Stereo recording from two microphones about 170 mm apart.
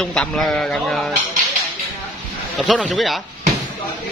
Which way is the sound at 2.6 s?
Centre (ahead or behind).